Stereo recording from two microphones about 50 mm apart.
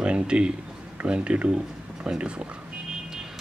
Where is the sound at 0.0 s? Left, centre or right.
Right.